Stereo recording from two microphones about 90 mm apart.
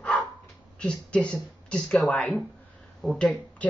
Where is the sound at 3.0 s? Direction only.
Centre (ahead or behind).